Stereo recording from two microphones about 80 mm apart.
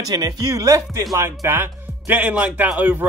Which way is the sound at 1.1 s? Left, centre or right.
Right.